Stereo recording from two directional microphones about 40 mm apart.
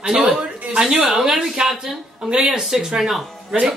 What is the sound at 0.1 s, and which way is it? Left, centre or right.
Speech, centre.